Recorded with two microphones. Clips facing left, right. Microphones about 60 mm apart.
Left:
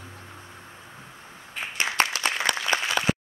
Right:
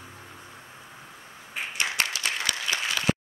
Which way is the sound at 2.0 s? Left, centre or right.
Left.